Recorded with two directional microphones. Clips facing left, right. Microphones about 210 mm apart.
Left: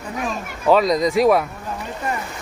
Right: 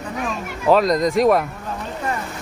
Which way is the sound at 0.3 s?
Centre (ahead or behind).